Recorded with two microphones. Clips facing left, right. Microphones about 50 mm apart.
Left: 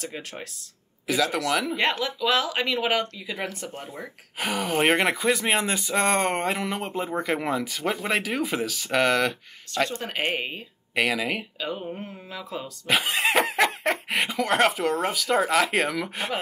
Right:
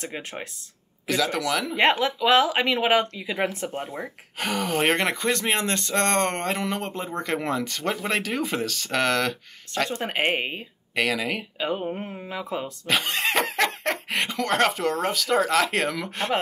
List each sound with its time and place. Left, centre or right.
0.0 s speech: right
1.0 s speech: centre
1.8 s speech: right
4.4 s speech: centre
9.8 s speech: right
11.0 s speech: centre
11.6 s speech: right
12.8 s speech: centre